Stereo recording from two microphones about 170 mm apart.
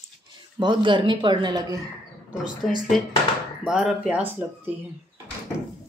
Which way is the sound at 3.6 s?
5° right (ahead or behind).